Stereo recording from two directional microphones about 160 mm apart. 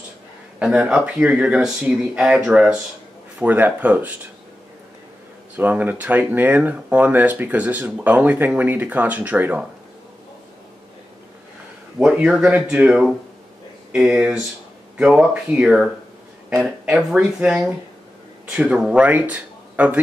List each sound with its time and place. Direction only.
0.6 s speech: 5° right (ahead or behind)
5.6 s speech: 10° right (ahead or behind)
12.0 s speech: 5° right (ahead or behind)